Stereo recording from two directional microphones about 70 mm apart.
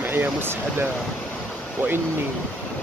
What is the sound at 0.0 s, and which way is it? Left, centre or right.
Speech, right.